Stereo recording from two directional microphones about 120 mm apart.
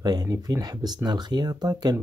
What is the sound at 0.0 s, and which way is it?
Speech, 35° right (ahead or behind).